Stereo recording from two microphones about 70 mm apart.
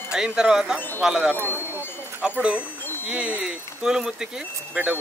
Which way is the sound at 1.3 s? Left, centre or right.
Left.